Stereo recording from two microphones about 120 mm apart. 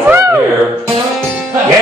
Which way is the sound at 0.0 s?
20° right (ahead or behind).